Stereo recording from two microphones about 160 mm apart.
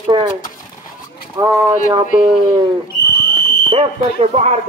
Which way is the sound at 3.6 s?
35° right (ahead or behind).